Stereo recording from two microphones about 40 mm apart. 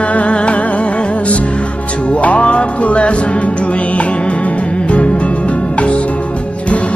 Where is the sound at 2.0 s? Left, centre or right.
Left.